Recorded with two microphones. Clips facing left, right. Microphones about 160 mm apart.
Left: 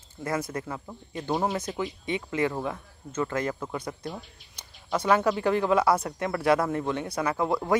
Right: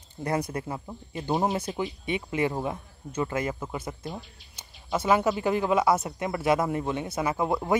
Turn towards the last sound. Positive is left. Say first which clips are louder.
# even
turn(degrees=-5)  # may be behind; listen again after turning